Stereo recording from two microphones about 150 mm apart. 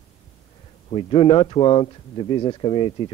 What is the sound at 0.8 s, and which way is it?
Speech, 35° left (ahead or behind).